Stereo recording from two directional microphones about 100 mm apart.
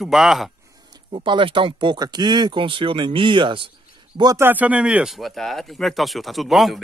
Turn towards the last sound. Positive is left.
turn(degrees=0)  # may be behind; listen again after turning